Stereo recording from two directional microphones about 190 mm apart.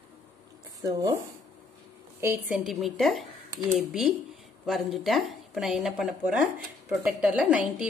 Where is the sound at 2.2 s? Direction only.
10° right (ahead or behind).